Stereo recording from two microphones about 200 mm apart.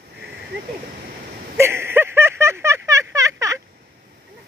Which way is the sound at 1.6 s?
10° right (ahead or behind).